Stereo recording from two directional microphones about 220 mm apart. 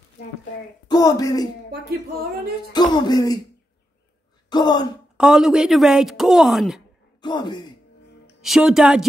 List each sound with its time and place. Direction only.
0.8 s speech: 15° left (ahead or behind)
2.7 s music: 20° left (ahead or behind)
4.5 s speech: 20° left (ahead or behind)
5.1 s speech: 5° right (ahead or behind)
7.2 s music: 20° left (ahead or behind)
8.4 s speech: centre (ahead or behind)